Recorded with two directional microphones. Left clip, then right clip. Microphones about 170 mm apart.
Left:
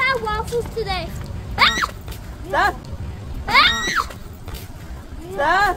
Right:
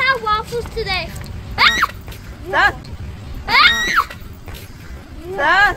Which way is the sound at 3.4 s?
15° left (ahead or behind).